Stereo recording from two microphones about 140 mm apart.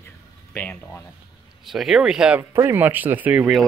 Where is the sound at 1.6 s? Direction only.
Centre (ahead or behind).